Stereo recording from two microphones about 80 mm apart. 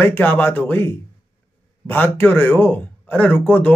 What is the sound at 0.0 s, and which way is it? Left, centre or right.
A man's voice, left.